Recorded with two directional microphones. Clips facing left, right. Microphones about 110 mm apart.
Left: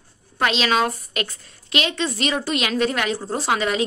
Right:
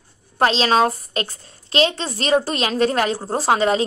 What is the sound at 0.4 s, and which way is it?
A woman's voice, 35° right (ahead or behind).